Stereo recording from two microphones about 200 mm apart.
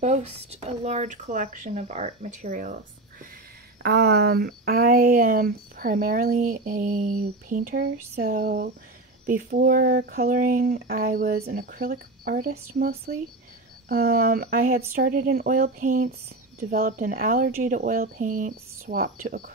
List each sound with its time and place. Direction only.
0.0 s speech: 35° right (ahead or behind)
3.8 s speech: 55° right (ahead or behind)